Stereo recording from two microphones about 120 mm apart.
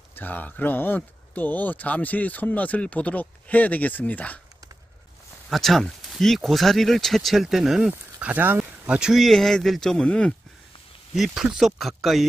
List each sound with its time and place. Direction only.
0.1 s speech: 15° left (ahead or behind)
5.5 s speech: centre (ahead or behind)